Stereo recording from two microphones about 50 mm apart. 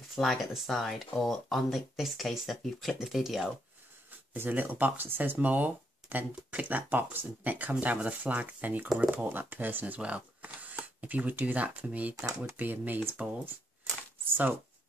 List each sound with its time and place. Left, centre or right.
0.1 s speech: centre
4.4 s speech: right
5.4 s speech: right
9.9 s speech: right
14.3 s speech: right